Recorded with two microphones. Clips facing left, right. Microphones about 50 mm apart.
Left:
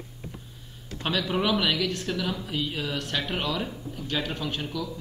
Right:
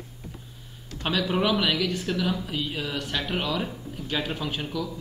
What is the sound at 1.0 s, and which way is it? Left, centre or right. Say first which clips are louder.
Speech: right 2 dB; centre.